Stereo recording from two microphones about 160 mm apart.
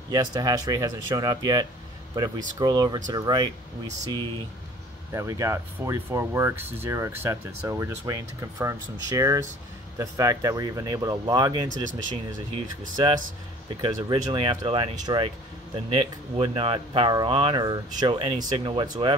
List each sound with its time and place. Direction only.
0.1 s speech: 25° right (ahead or behind)
13.7 s speech: 25° right (ahead or behind)